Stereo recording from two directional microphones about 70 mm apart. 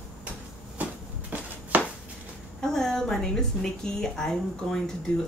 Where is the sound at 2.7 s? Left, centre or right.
Centre.